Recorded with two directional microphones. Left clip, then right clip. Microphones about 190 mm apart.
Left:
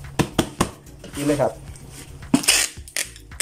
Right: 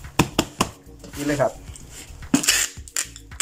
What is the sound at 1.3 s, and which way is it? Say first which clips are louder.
Speech: left 1 dB; 15° left (ahead or behind).